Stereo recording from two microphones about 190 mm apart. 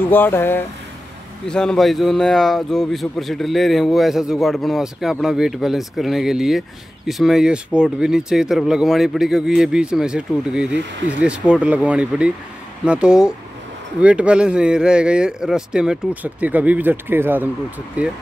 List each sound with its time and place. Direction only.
0.0 s a man's voice: 10° left (ahead or behind); by 18.1 s 5° right (ahead or behind)